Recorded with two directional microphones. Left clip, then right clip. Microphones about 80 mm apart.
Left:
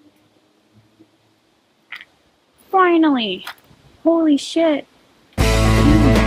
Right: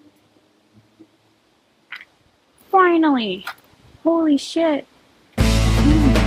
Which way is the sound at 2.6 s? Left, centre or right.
Right.